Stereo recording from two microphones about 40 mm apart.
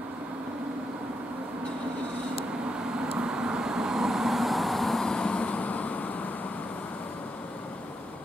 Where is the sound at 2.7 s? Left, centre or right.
Right; by 5.0 s centre.